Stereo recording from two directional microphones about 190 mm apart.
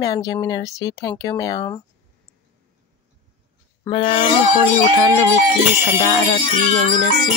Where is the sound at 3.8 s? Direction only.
25° left (ahead or behind).